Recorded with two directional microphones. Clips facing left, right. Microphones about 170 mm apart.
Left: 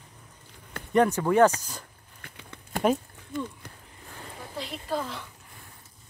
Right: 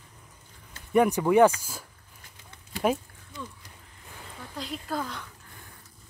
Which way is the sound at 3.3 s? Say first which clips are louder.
Left 8 dB; 55° left (ahead or behind).